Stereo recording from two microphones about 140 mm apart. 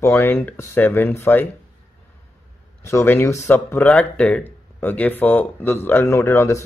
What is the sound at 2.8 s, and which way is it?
Speech, 20° left (ahead or behind).